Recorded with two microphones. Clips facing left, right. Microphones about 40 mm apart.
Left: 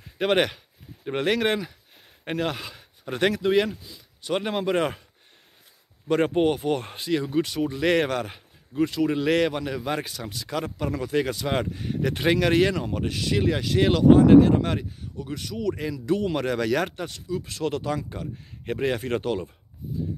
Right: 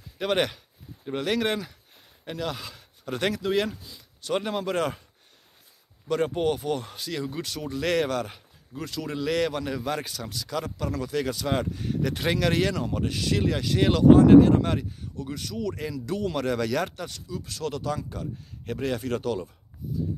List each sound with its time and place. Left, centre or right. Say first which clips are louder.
0.2 s speech: left 3 dB; left
1.3 s speech: left 1 dB; centre
2.2 s speech: left 4 dB; left
2.5 s speech: left 2 dB; centre
3.7 s speech: left 2 dB; centre
4.2 s speech: left 1 dB; centre
6.2 s speech: left 4 dB; left
6.5 s speech: left 3 dB; centre
17.6 s speech: left 2 dB; left